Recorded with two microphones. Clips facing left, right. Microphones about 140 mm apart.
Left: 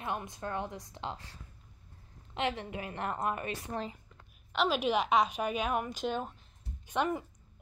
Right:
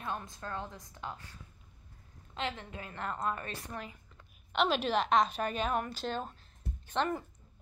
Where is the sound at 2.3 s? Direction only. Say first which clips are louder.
Left 4 dB; 20° left (ahead or behind).